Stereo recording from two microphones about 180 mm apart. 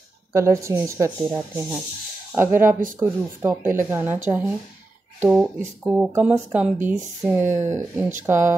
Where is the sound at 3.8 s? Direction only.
15° right (ahead or behind).